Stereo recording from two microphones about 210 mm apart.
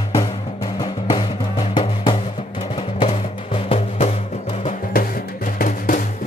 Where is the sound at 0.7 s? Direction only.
20° left (ahead or behind).